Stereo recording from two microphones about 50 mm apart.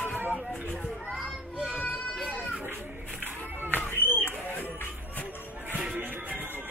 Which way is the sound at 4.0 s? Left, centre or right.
Left.